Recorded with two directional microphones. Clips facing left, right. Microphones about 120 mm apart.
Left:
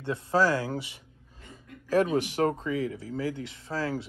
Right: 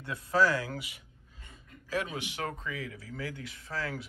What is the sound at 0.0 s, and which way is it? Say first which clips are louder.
Speech: left 3 dB; 30° left (ahead or behind).